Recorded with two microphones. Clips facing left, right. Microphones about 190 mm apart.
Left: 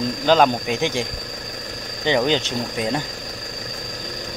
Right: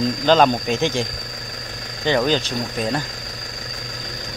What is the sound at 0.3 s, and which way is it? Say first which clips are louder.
Speech: right 1 dB; 10° left (ahead or behind).